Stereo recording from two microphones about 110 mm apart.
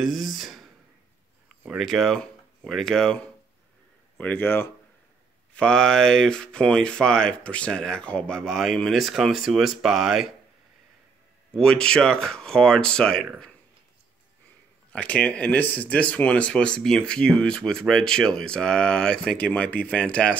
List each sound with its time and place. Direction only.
0.0 s a sound: centre (ahead or behind)
1.8 s speech: centre (ahead or behind)
4.2 s speech: 20° left (ahead or behind)
5.5 s speech: 10° left (ahead or behind)
11.5 s speech: 5° left (ahead or behind)
14.9 s speech: 15° left (ahead or behind)